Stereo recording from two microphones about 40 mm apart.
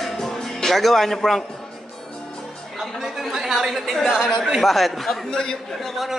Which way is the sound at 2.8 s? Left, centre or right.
Centre.